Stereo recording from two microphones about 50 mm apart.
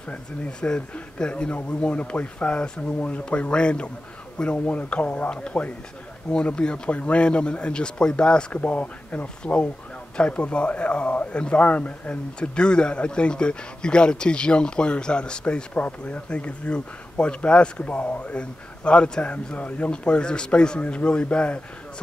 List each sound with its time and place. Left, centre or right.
0.6 s speech: centre
8.6 s speech: left
19.9 s speech: centre